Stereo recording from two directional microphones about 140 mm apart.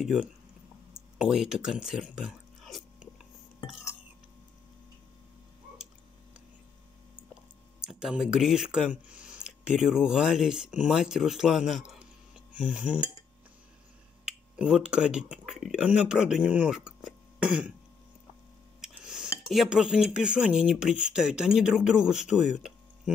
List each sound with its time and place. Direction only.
0.0 s speech: 5° right (ahead or behind)
7.8 s speech: 5° right (ahead or behind)
14.2 s speech: 5° right (ahead or behind)
18.8 s dishes: 5° right (ahead or behind)
19.5 s speech: 5° right (ahead or behind)
23.1 s music: 5° right (ahead or behind)